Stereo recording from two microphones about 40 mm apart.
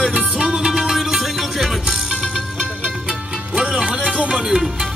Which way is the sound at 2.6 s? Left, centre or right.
Right.